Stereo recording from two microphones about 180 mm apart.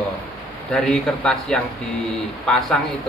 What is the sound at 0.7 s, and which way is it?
Speech, 5° left (ahead or behind).